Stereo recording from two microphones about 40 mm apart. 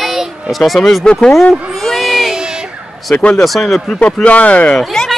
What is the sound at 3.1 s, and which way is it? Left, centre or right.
Speech, left.